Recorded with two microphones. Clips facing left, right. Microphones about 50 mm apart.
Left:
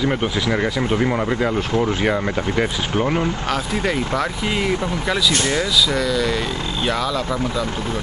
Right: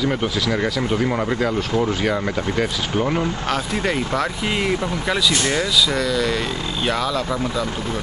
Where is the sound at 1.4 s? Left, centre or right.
Centre.